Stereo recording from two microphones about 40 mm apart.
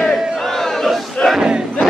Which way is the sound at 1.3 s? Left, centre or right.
Right.